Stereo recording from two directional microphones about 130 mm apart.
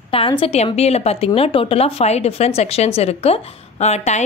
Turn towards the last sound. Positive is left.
turn(degrees=60)  # may be behind; listen again after turning